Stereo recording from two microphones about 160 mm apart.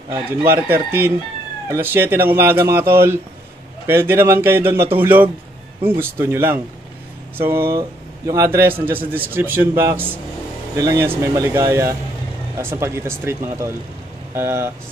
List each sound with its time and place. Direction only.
0.1 s a man's voice: 15° right (ahead or behind)